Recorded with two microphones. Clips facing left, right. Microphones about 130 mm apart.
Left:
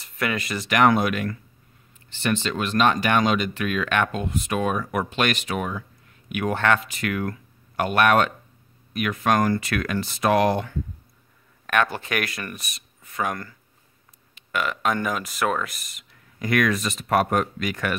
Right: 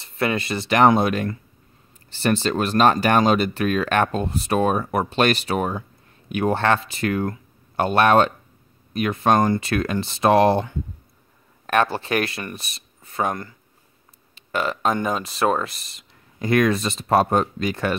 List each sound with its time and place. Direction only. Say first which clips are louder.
0.0 s speech: right 4 dB; 30° right (ahead or behind)